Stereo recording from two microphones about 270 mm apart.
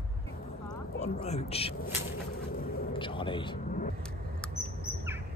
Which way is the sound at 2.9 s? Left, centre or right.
Centre.